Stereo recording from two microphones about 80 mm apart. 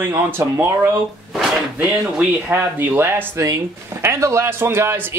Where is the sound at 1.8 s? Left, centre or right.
Centre.